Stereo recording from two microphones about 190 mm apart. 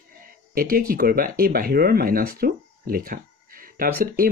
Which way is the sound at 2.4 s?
50° right (ahead or behind).